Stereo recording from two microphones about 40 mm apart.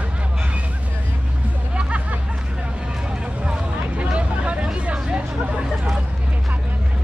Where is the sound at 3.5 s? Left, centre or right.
Right.